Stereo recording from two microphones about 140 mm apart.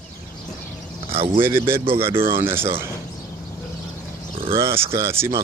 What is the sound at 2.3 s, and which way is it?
Speech, 15° right (ahead or behind).